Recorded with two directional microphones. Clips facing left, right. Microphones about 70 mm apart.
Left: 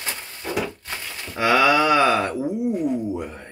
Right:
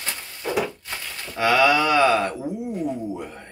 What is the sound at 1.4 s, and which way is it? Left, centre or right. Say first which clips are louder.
Speech: left 1 dB; left.